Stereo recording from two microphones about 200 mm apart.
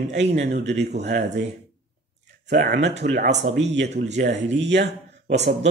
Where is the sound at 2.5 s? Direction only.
55° right (ahead or behind).